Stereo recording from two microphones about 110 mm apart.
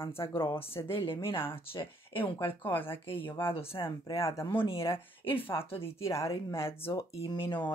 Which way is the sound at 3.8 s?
30° left (ahead or behind).